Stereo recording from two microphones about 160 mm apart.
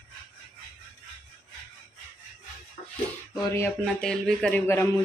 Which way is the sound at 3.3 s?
20° left (ahead or behind).